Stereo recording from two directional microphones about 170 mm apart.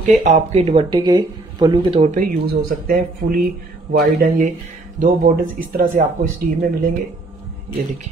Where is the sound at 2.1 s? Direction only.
55° right (ahead or behind).